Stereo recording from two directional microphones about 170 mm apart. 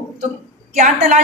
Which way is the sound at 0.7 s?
45° right (ahead or behind).